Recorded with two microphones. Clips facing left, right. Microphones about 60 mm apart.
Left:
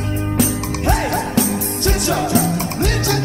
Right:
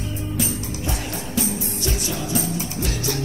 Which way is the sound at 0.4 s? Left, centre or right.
Left.